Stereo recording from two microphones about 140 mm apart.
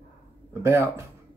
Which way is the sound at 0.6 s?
20° right (ahead or behind).